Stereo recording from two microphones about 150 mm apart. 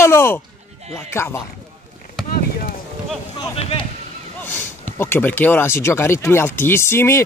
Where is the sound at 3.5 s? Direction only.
40° left (ahead or behind).